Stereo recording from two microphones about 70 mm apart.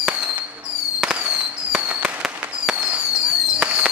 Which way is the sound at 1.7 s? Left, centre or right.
Right.